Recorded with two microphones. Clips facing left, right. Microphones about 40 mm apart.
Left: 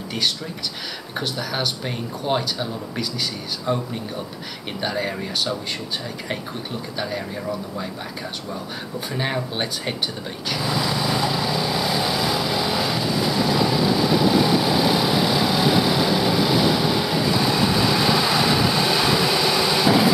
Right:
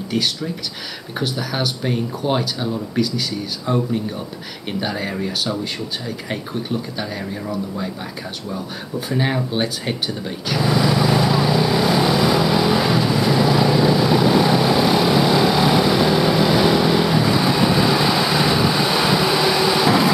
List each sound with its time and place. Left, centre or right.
0.1 s speech: centre
9.1 s speech: centre
10.6 s lawn mower: centre
11.2 s vehicle: centre
14.7 s vehicle: centre
15.0 s vehicle: centre